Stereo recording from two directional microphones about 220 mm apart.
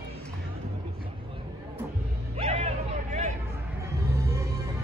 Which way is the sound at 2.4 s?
30° right (ahead or behind).